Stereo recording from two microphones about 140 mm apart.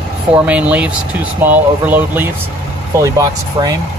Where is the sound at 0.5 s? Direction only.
10° right (ahead or behind).